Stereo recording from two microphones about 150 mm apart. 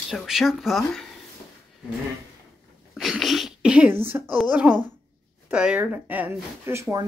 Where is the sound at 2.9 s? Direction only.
Centre (ahead or behind).